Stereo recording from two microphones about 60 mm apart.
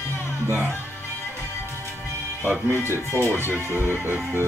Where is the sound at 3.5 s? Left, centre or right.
Right.